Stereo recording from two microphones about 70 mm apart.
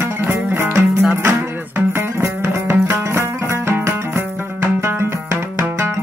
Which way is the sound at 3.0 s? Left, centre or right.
Right.